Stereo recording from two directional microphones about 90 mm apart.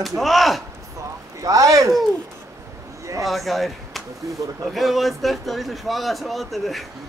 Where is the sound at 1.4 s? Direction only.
40° right (ahead or behind).